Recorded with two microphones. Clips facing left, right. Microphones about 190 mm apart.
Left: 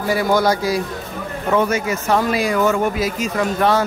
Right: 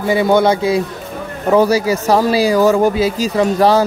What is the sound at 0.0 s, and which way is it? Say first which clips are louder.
A man's voice: right 4 dB; 25° right (ahead or behind).